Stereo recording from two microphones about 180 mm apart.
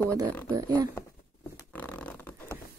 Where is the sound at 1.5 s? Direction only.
10° left (ahead or behind).